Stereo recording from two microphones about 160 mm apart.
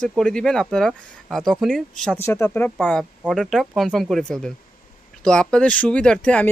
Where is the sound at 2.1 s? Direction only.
15° left (ahead or behind).